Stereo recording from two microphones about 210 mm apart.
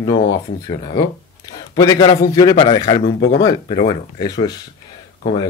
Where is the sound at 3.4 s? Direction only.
20° left (ahead or behind).